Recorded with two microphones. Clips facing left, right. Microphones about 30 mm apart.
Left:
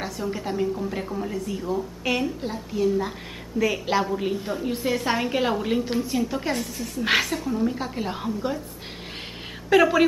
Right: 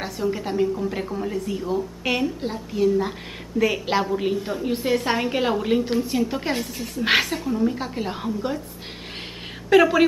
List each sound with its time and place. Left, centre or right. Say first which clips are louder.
0.0 s a woman's voice: right 3 dB; centre
6.0 s a woman's voice: right 2 dB; centre
9.7 s a woman's voice: right 2 dB; centre